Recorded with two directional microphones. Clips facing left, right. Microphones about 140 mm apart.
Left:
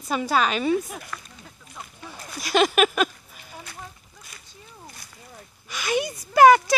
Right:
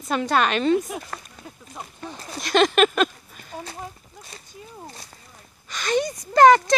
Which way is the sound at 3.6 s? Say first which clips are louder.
Right 5 dB; 30° right (ahead or behind).